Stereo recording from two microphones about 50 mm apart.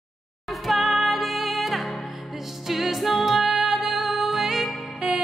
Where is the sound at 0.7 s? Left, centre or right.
Centre.